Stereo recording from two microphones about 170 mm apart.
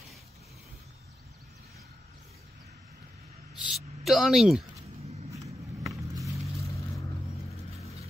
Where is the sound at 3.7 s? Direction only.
Centre (ahead or behind).